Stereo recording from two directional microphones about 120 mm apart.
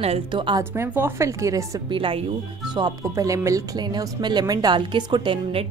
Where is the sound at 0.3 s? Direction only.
40° right (ahead or behind).